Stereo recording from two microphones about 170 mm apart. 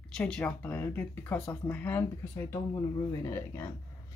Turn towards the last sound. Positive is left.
turn(degrees=15)  # may be behind; listen again after turning